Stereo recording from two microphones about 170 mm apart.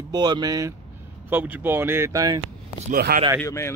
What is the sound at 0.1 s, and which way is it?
Speech, 25° right (ahead or behind).